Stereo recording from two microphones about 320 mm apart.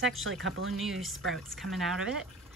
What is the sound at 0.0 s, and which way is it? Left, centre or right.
Speech, right.